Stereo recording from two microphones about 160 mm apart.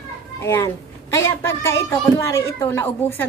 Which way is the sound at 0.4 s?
15° left (ahead or behind).